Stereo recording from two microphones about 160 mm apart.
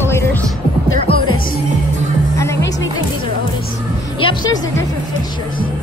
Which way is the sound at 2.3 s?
15° left (ahead or behind).